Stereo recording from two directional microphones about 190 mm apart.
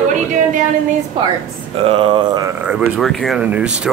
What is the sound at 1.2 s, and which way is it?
Speech, 30° right (ahead or behind).